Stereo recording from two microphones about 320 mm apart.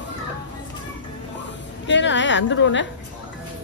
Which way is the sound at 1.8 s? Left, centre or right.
Left.